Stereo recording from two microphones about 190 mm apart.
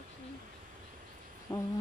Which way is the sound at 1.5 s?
15° left (ahead or behind).